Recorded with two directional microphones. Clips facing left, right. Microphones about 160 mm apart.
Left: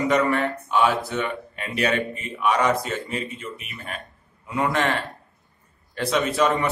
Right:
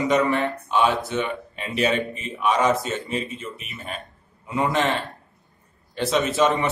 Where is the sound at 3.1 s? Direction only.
25° right (ahead or behind).